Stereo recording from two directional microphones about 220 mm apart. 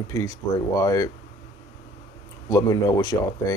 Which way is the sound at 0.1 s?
15° left (ahead or behind).